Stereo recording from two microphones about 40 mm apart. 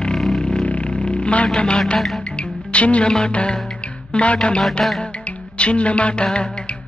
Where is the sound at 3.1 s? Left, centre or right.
Left.